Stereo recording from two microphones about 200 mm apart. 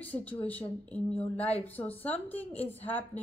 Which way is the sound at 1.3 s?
30° left (ahead or behind).